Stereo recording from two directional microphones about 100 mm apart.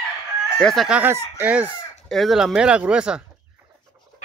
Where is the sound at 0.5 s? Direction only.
Centre (ahead or behind).